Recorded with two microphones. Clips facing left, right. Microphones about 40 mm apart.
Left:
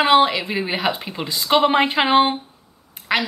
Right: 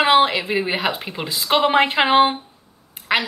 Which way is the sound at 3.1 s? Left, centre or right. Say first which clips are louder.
Right 1 dB; centre.